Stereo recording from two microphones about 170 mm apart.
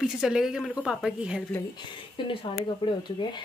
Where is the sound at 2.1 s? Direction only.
30° left (ahead or behind).